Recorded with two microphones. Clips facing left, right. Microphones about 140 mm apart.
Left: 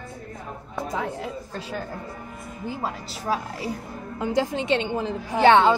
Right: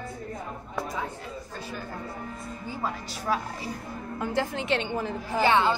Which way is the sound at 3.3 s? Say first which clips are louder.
Left 2 dB; 35° left (ahead or behind).